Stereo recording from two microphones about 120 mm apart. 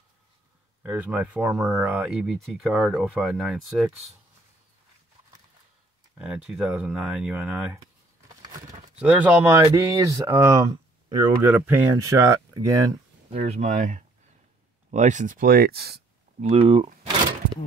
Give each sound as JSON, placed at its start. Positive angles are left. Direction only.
{"t": 0.8, "sound": "speech", "side_deg": -10}
{"t": 6.1, "sound": "speech", "side_deg": -5}
{"t": 9.0, "sound": "speech", "side_deg": -15}
{"t": 13.4, "sound": "speech", "side_deg": -80}
{"t": 16.3, "sound": "speech", "side_deg": -55}